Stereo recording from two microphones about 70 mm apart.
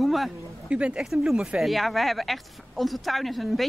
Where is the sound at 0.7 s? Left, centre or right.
Centre.